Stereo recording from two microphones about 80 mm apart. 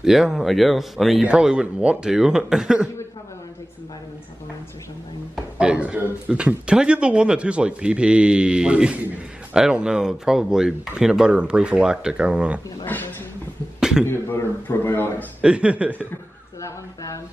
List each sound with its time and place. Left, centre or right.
0.0 s speech: centre
5.6 s speech: centre
12.8 s speech: left
13.7 s a sound: centre
14.0 s a man's voice: left
15.4 s speech: centre
16.6 s speech: left